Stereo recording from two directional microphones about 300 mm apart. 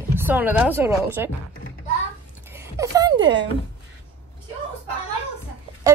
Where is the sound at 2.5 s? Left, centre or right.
Centre.